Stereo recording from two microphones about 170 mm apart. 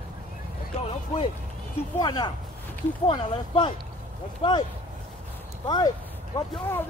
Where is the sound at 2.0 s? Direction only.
25° left (ahead or behind).